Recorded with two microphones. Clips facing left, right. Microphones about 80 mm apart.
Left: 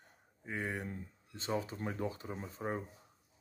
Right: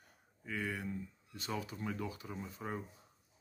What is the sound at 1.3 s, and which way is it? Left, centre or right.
Speech, left.